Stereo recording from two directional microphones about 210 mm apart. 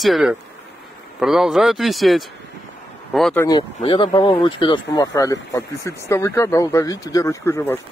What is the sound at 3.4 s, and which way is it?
Speech, 20° left (ahead or behind).